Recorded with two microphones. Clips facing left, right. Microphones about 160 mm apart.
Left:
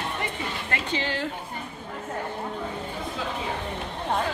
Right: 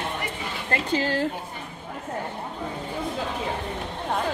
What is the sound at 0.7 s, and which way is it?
Speech, 40° right (ahead or behind).